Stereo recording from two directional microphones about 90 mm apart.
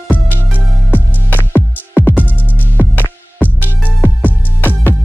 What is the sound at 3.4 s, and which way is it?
Music, 20° left (ahead or behind).